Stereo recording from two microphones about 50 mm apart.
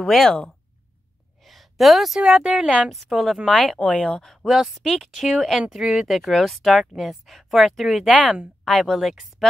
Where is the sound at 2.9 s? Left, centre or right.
Centre.